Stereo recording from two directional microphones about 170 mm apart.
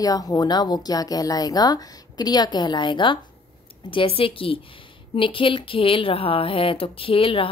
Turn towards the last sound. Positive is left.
turn(degrees=30)  # may be behind; listen again after turning